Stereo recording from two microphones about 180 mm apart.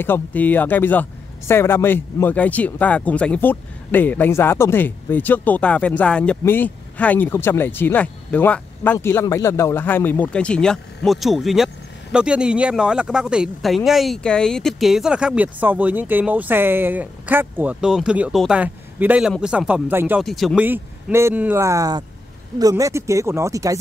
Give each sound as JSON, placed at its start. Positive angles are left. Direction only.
{"t": 0.0, "sound": "speech", "side_deg": 10}
{"t": 20.2, "sound": "speech", "side_deg": 0}
{"t": 20.6, "sound": "speech", "side_deg": -10}